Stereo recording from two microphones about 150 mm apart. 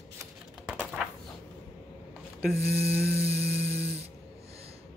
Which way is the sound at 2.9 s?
20° left (ahead or behind).